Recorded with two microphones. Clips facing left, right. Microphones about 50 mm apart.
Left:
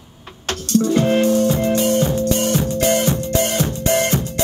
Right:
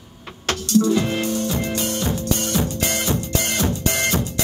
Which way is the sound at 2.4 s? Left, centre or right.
Left.